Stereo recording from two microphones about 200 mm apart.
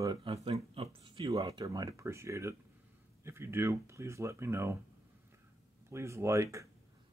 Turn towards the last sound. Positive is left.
turn(degrees=-15)  # may be behind; listen again after turning